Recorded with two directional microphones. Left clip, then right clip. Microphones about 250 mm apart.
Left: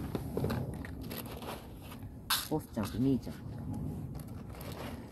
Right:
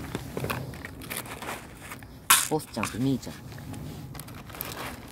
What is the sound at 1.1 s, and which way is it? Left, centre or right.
Biting, right.